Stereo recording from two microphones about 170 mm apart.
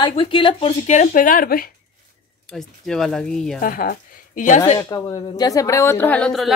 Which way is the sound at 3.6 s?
55° left (ahead or behind).